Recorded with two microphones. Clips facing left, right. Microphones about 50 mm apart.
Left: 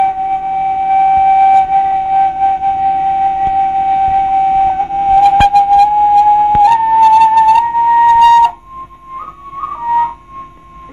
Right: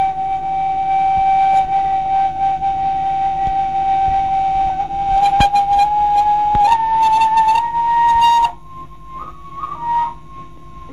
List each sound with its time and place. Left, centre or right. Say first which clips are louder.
0.0 s a sound: left 4 dB; left
2.3 s music: left 5 dB; left
3.0 s a sound: left 5 dB; left
5.2 s flute: left 4 dB; centre
6.7 s flute: left 6 dB; centre
9.7 s whistling: left 5 dB; left